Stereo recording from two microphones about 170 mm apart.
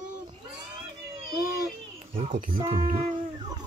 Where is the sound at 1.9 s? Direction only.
35° right (ahead or behind).